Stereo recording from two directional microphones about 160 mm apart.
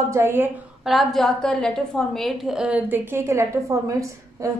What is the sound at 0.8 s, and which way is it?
A woman's voice, centre (ahead or behind).